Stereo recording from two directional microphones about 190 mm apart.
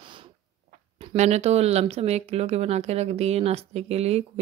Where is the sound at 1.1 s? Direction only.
35° right (ahead or behind).